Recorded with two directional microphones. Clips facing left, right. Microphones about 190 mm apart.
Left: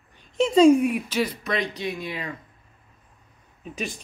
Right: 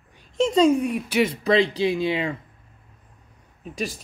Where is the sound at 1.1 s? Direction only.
25° right (ahead or behind).